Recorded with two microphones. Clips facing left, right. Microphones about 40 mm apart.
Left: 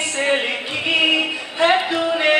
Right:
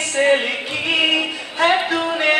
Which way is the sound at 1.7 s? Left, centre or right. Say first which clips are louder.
Even; centre.